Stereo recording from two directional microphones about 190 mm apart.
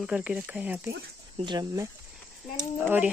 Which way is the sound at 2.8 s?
10° right (ahead or behind).